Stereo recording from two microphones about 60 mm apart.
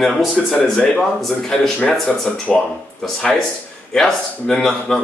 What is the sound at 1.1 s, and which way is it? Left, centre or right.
Speech, centre.